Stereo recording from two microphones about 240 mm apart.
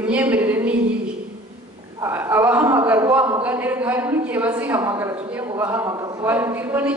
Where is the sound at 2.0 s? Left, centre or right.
Centre.